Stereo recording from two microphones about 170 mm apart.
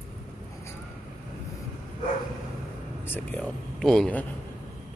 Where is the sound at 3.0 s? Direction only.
10° left (ahead or behind).